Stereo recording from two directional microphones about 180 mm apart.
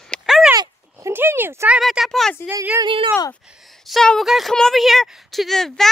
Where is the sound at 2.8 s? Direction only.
30° right (ahead or behind).